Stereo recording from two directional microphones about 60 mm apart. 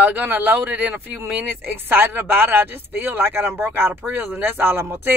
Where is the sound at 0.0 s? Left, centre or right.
Right.